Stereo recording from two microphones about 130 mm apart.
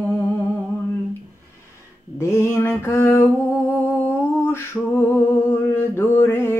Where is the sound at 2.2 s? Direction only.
20° left (ahead or behind).